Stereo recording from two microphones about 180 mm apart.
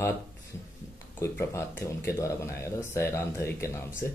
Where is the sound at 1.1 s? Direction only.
15° left (ahead or behind).